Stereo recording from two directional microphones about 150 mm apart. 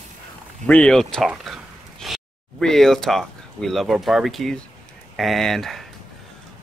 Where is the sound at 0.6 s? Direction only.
5° left (ahead or behind).